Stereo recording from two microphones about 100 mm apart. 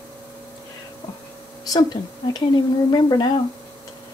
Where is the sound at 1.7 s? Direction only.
40° left (ahead or behind).